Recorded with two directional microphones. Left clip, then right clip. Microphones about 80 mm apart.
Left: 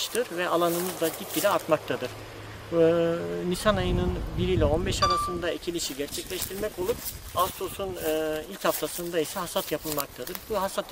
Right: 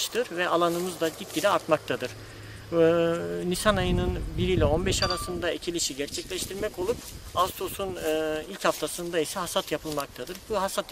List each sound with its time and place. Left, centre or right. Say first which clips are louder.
0.0 s speech: right 1 dB; centre